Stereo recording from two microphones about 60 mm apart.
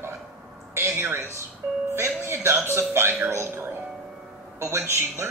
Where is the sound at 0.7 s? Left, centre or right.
Right.